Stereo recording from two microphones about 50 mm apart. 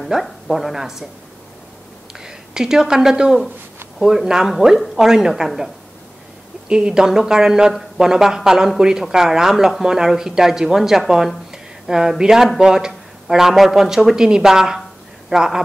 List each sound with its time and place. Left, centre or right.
0.0 s a woman's voice: centre
2.1 s speech: centre
6.7 s speech: centre